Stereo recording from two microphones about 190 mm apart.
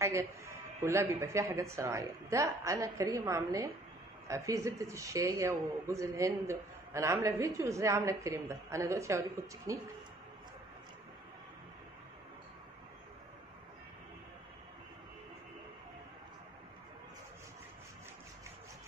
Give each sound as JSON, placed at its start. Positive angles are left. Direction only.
{"t": 0.0, "sound": "speech", "side_deg": -15}